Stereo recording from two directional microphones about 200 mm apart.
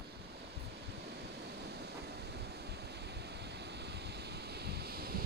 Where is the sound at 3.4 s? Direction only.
55° right (ahead or behind).